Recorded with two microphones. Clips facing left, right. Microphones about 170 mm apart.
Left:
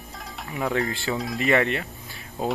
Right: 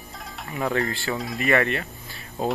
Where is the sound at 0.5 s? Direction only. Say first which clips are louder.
Even; centre (ahead or behind).